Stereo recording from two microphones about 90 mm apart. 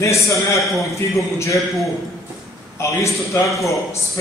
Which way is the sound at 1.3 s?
35° left (ahead or behind).